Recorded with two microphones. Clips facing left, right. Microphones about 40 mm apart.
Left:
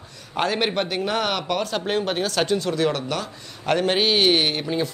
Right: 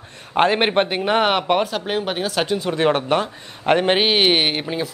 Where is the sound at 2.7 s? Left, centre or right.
Right.